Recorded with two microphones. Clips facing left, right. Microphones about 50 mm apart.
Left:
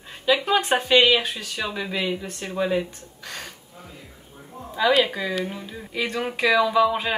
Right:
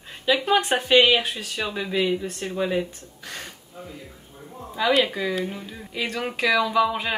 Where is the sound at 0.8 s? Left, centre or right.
Right.